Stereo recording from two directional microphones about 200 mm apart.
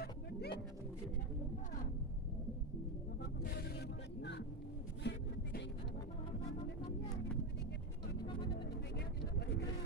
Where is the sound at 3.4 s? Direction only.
50° left (ahead or behind).